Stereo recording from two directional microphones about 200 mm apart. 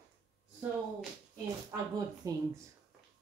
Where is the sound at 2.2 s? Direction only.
15° right (ahead or behind).